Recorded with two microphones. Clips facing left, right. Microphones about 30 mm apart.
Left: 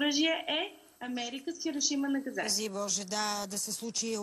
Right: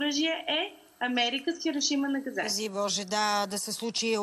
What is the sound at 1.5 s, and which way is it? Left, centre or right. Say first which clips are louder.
Speech: right 5 dB; right.